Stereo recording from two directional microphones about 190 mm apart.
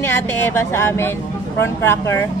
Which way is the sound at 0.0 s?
15° left (ahead or behind).